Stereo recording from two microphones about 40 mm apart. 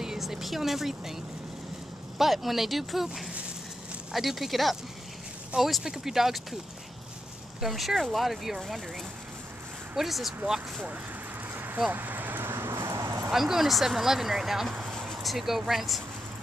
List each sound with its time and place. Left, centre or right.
0.2 s speech: centre
4.1 s speech: centre
7.6 s speech: centre
9.9 s speech: centre
11.5 s a sound: right
11.9 s vehicle: right
12.4 s clip-clop: right
13.3 s speech: centre
14.9 s a sound: centre
15.2 s speech: centre